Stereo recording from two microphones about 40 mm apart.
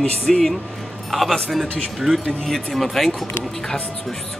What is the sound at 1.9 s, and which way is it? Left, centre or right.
A woman's voice, centre.